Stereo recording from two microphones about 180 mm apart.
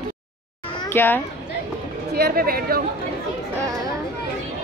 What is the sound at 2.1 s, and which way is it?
Speech, 60° right (ahead or behind).